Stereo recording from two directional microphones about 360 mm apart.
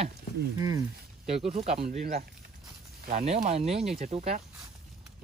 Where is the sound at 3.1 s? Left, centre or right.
Centre.